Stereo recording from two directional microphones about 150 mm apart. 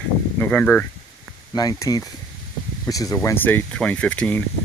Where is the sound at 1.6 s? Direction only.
25° left (ahead or behind); by 4.4 s 10° left (ahead or behind).